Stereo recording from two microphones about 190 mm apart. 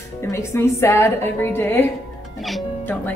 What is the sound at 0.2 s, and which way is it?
A woman's voice, 15° left (ahead or behind).